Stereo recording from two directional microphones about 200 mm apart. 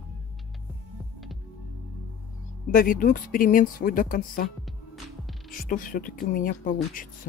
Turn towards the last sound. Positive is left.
turn(degrees=45)  # may be behind; listen again after turning